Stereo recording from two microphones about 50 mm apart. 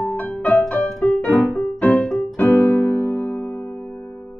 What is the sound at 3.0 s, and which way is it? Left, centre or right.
Music, left.